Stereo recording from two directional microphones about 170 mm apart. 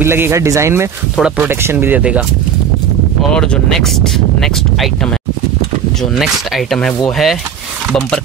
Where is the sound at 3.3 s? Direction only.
5° left (ahead or behind).